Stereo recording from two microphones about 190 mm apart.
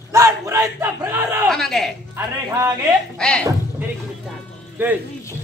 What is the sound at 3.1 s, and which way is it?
Speech, 5° left (ahead or behind).